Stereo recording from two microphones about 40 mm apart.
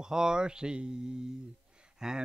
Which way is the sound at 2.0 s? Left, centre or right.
Centre.